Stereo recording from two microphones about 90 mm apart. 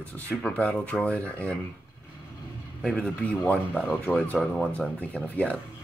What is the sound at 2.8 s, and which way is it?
Speech, 5° left (ahead or behind).